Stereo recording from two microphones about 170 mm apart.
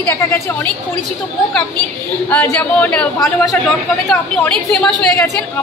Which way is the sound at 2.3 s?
10° left (ahead or behind).